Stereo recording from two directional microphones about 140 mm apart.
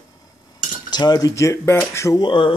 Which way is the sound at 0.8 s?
30° left (ahead or behind).